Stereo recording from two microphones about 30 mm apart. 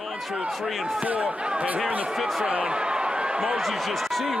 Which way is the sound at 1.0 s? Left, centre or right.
Right.